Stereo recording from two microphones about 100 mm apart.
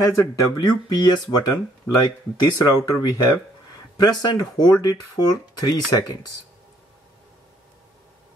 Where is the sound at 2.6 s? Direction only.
45° left (ahead or behind).